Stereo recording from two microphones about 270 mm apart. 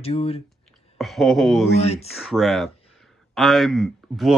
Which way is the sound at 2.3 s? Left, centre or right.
Centre.